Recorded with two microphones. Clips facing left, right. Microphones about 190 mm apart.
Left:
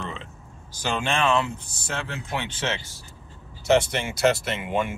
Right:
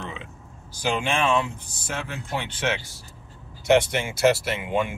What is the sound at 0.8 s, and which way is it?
Speech, 10° right (ahead or behind).